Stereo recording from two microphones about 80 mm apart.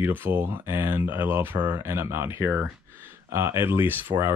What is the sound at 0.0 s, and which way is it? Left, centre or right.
Speech, right.